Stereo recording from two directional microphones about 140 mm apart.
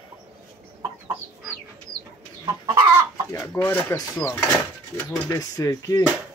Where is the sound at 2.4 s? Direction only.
30° right (ahead or behind).